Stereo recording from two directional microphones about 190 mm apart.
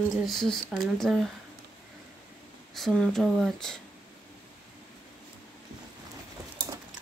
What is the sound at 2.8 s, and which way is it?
Speech, 5° left (ahead or behind).